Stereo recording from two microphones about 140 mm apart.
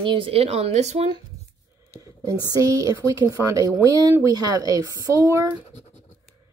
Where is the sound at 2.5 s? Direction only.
25° right (ahead or behind).